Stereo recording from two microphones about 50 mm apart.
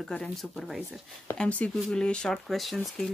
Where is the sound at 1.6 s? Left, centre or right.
Left.